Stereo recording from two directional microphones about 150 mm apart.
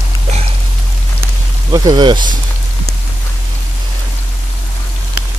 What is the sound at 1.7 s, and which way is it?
Speech, 30° right (ahead or behind).